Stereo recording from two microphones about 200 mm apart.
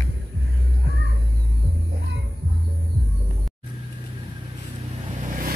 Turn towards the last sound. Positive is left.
turn(degrees=-40)  # may be behind; listen again after turning